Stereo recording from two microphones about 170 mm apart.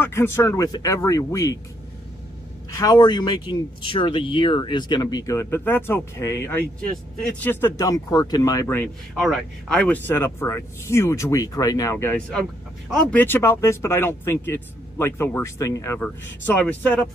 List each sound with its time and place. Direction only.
0.0 s speech: 15° left (ahead or behind)
2.7 s speech: 20° left (ahead or behind)
9.1 s speech: centre (ahead or behind)